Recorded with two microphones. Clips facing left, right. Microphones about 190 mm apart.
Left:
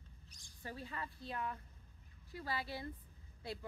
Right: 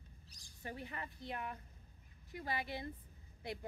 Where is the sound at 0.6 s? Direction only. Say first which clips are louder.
Even; 20° right (ahead or behind).